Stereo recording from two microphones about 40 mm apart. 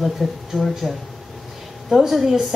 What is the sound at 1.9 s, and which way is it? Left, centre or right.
Speech, centre.